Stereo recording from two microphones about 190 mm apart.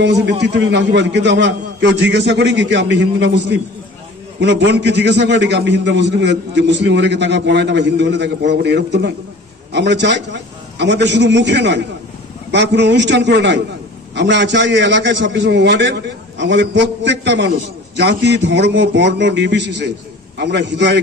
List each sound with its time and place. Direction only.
0.0 s a man's voice: 65° right (ahead or behind)